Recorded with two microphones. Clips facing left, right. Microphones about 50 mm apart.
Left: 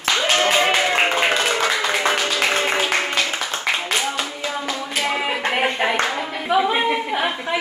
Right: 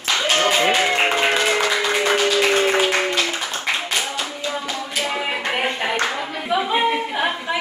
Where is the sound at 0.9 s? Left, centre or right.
Centre.